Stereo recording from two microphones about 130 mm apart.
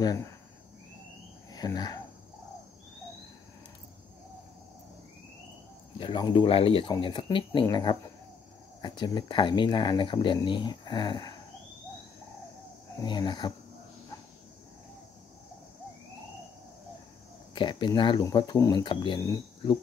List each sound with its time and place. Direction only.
0.0 s speech: 30° left (ahead or behind)
1.5 s speech: 30° left (ahead or behind)
5.9 s speech: 35° left (ahead or behind)
13.0 s speech: 35° left (ahead or behind)
17.6 s speech: 35° left (ahead or behind)